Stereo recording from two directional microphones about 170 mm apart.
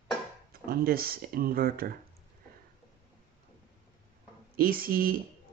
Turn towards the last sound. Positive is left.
turn(degrees=-60)  # may be behind; listen again after turning